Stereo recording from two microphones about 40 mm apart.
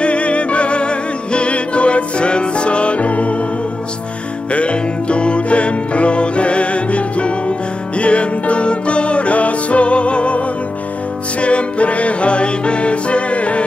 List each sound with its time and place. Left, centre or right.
0.0 s music: left
4.5 s music: left
11.4 s music: left